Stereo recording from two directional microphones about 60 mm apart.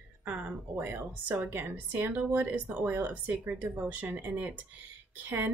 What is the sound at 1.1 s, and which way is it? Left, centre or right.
Speech, right.